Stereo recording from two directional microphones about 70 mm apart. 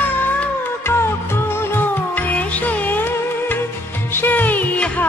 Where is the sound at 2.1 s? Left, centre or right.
Left.